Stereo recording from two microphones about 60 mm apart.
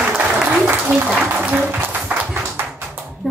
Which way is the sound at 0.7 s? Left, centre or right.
Right.